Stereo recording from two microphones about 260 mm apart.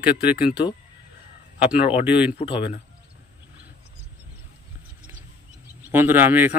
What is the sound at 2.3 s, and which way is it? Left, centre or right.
Speech, left.